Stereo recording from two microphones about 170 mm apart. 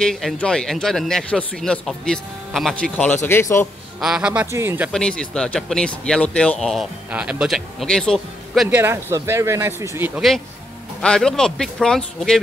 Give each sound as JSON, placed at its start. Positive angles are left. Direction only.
{"t": 0.0, "sound": "speech", "side_deg": 0}
{"t": 4.0, "sound": "speech", "side_deg": -5}
{"t": 4.9, "sound": "speech", "side_deg": 5}
{"t": 8.6, "sound": "speech", "side_deg": -15}
{"t": 11.0, "sound": "speech", "side_deg": 5}